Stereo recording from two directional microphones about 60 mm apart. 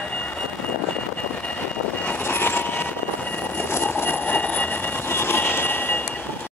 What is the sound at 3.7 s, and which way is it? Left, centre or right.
Train, left.